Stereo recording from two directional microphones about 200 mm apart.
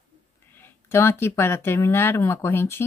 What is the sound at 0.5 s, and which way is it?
Speech, 10° left (ahead or behind).